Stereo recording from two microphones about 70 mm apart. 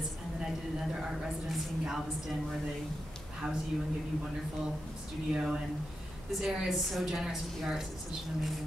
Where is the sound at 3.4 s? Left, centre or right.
Centre.